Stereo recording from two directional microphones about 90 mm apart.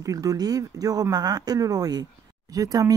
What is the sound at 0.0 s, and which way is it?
Speech, 40° right (ahead or behind).